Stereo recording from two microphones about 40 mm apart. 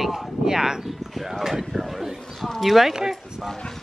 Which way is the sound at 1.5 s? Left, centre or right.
Centre.